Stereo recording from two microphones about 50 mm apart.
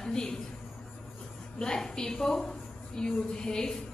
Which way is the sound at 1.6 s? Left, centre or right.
Centre.